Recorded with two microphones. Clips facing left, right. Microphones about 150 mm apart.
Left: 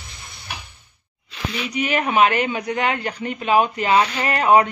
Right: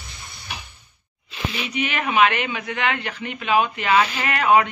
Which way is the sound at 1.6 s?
40° left (ahead or behind).